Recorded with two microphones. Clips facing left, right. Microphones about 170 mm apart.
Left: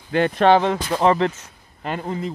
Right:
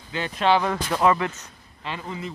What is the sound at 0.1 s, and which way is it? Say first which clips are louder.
Speech: left 6 dB; 55° left (ahead or behind).